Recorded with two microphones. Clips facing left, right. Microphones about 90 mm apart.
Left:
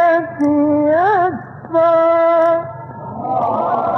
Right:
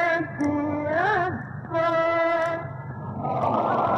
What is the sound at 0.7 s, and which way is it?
Music, 40° left (ahead or behind).